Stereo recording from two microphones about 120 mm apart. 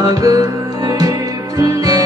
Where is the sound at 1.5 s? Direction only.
30° right (ahead or behind).